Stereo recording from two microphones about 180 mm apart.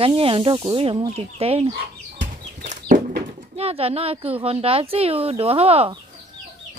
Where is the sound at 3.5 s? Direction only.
35° right (ahead or behind).